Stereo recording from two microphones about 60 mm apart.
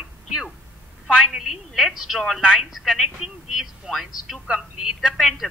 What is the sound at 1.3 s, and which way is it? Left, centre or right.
A woman's voice, centre.